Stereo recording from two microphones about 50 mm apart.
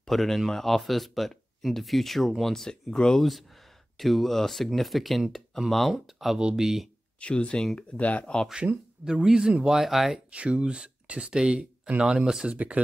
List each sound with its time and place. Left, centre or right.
0.0 s speech: centre
7.2 s speech: left
8.0 s speech: left
9.0 s speech: centre
10.3 s speech: right
12.5 s speech: right